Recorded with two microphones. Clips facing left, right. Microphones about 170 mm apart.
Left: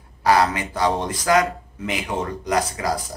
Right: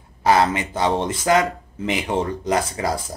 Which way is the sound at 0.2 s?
25° right (ahead or behind).